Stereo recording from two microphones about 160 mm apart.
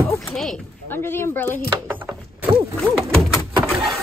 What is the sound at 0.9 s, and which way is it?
Speech, 15° left (ahead or behind).